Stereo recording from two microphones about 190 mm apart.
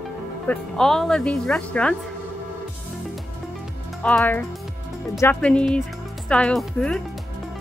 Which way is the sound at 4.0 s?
5° left (ahead or behind).